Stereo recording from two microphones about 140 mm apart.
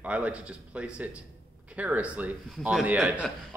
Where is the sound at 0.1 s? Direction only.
10° right (ahead or behind).